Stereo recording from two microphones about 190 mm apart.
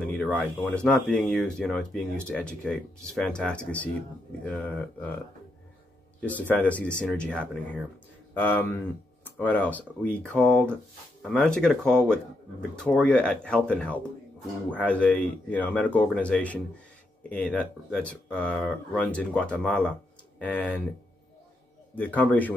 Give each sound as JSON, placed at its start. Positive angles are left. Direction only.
{"t": 0.0, "sound": "speech", "side_deg": 5}
{"t": 6.2, "sound": "speech", "side_deg": 10}
{"t": 21.9, "sound": "speech", "side_deg": 10}